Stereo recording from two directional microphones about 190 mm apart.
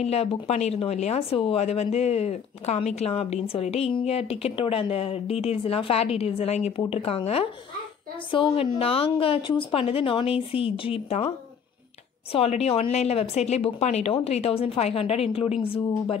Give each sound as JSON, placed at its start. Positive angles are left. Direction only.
{"t": 0.0, "sound": "a woman's voice", "side_deg": 35}